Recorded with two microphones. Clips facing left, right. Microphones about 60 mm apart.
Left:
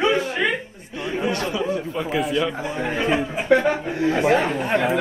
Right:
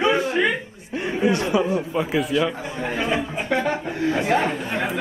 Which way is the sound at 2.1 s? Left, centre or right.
Centre.